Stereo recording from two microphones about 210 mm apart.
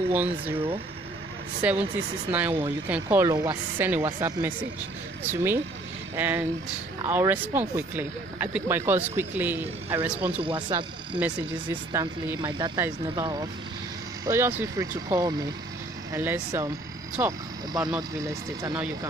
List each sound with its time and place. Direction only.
0.1 s speech: 10° right (ahead or behind)
1.6 s speech: 5° right (ahead or behind)
10.4 s speech: 25° right (ahead or behind)
11.1 s speech: 5° right (ahead or behind)
12.0 s speech: 20° right (ahead or behind)